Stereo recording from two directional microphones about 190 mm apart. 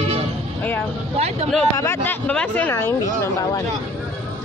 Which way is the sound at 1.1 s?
35° right (ahead or behind).